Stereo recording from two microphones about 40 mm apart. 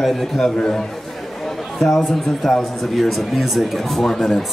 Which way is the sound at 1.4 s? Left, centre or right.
Centre.